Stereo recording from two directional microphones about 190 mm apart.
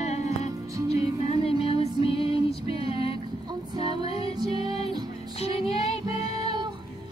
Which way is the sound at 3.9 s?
30° left (ahead or behind).